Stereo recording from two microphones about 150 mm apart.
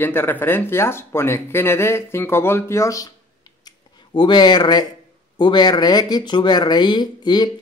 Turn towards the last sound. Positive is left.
turn(degrees=30)  # may be behind; listen again after turning